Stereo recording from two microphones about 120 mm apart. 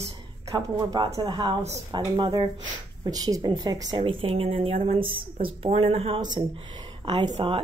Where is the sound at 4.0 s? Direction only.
50° right (ahead or behind).